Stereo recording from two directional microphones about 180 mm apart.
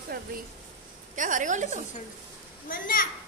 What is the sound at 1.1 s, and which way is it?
Speech, 45° right (ahead or behind).